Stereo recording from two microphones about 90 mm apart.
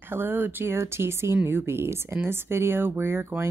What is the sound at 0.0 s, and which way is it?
Speech, 25° right (ahead or behind).